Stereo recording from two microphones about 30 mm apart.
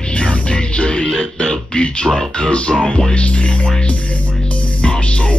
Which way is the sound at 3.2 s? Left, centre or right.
Left.